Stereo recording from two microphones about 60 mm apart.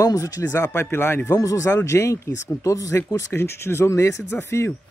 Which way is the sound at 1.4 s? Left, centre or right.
Left.